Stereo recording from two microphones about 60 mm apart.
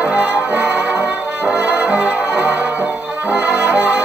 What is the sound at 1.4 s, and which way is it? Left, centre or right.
Brass instrument, centre.